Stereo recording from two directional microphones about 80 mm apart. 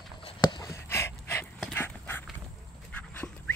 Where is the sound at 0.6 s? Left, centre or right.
Left.